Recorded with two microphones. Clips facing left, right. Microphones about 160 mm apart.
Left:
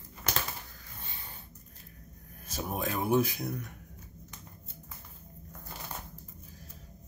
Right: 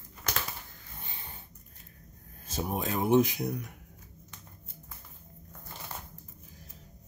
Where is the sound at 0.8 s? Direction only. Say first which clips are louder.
Right 1 dB; 20° right (ahead or behind).